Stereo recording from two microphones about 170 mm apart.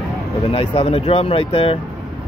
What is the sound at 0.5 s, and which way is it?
Speech, 30° left (ahead or behind).